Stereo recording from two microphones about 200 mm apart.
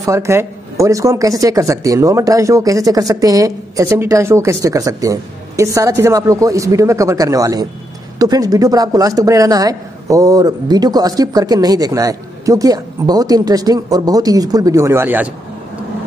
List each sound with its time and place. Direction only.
0.0 s speech: 15° right (ahead or behind)